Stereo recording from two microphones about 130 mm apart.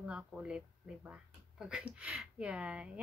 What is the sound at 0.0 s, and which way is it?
Speech, 10° right (ahead or behind).